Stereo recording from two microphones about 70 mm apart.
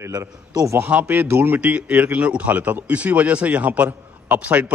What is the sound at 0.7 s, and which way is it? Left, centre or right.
Speech, right.